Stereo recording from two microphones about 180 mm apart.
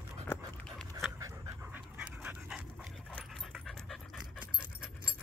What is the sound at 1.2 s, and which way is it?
Pant, 20° right (ahead or behind).